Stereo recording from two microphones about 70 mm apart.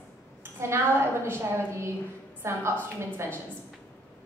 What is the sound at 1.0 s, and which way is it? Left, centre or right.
A woman's voice, right.